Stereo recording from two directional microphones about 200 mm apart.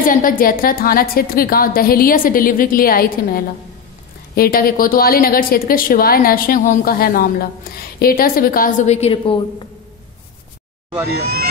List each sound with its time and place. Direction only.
0.0 s a woman's voice: 45° left (ahead or behind); by 9.4 s 25° left (ahead or behind)
11.1 s speech: 50° right (ahead or behind)